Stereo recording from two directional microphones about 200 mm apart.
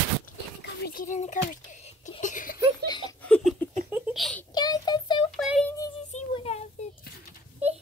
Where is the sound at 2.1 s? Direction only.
40° left (ahead or behind).